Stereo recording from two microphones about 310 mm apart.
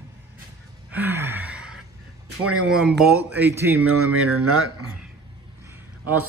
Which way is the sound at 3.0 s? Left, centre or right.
Centre.